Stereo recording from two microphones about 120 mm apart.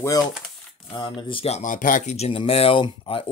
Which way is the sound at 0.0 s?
30° left (ahead or behind).